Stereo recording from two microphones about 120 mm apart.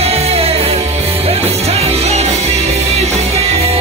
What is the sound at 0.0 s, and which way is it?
Music, 60° right (ahead or behind).